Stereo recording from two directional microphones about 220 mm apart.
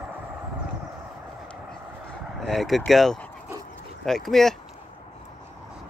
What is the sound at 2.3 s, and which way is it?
Speech, centre (ahead or behind).